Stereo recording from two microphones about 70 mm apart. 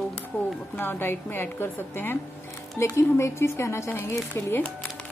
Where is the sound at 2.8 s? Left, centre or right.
Left.